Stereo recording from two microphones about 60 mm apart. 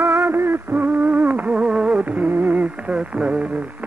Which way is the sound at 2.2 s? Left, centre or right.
Right.